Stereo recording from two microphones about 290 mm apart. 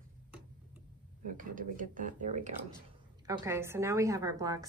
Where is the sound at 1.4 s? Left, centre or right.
Right.